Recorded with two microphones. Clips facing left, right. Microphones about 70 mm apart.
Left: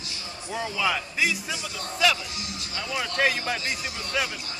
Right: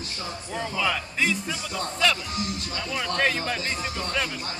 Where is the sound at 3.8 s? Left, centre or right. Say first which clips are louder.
Right 4 dB; right.